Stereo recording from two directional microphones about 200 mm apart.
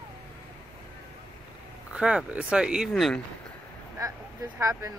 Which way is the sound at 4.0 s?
15° right (ahead or behind).